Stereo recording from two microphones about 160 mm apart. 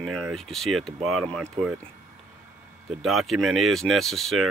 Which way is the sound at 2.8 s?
Centre (ahead or behind).